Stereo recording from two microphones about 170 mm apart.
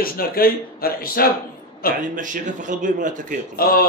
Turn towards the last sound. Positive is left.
turn(degrees=60)  # may be behind; listen again after turning